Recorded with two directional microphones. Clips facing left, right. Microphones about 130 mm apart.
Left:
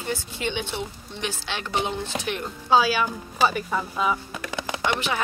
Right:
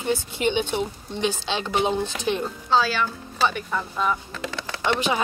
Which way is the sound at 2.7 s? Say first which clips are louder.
Left 2 dB; 10° left (ahead or behind).